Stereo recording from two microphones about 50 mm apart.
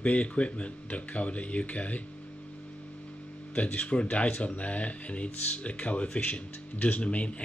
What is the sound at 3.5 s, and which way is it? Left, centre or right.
Speech, left.